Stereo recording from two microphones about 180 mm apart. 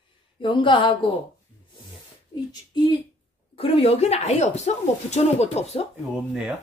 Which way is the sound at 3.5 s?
30° left (ahead or behind).